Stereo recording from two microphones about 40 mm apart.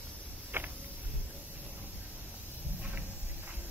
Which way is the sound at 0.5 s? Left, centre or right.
Right.